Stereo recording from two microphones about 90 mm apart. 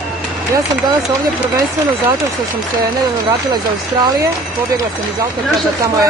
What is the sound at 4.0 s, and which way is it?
Speech, 45° right (ahead or behind).